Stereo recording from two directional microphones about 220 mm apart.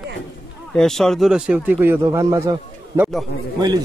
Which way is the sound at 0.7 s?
Centre (ahead or behind).